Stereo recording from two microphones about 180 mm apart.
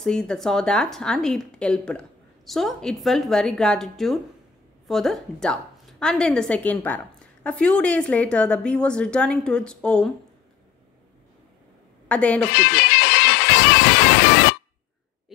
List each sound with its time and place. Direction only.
0.0 s a woman's voice: 5° left (ahead or behind)
12.1 s a woman's voice: 5° left (ahead or behind)
12.5 s music: 70° left (ahead or behind)